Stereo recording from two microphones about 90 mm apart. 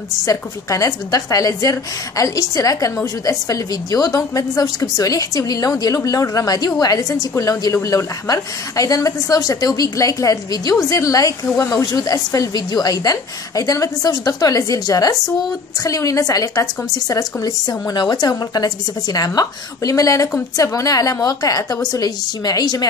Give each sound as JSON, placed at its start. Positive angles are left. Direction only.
{"t": 0.2, "sound": "a woman's voice", "side_deg": 40}
{"t": 11.8, "sound": "a woman's voice", "side_deg": 45}